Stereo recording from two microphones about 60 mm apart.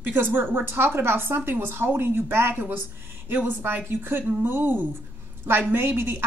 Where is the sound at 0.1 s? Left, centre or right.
Right.